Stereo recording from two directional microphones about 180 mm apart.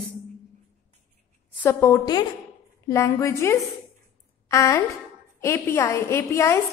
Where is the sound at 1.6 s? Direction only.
15° left (ahead or behind).